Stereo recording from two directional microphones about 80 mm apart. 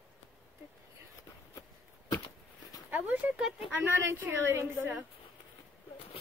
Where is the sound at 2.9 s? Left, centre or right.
Right.